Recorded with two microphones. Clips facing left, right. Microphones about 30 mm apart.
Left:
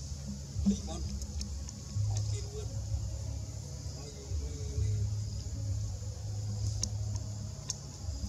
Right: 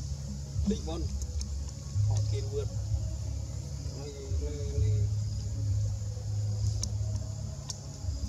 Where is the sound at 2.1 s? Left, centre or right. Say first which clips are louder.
Right 7 dB; centre.